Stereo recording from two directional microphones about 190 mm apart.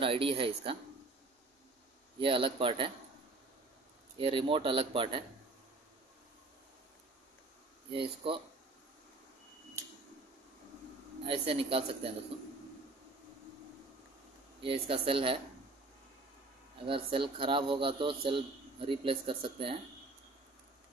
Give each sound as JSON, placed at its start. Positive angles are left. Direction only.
{"t": 0.0, "sound": "a man's voice", "side_deg": -30}
{"t": 2.1, "sound": "a man's voice", "side_deg": -25}
{"t": 4.2, "sound": "a man's voice", "side_deg": -25}
{"t": 11.2, "sound": "a man's voice", "side_deg": -30}
{"t": 14.6, "sound": "a man's voice", "side_deg": -30}
{"t": 16.8, "sound": "a man's voice", "side_deg": -25}